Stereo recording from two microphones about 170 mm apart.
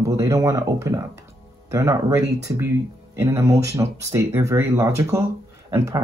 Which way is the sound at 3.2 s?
15° right (ahead or behind).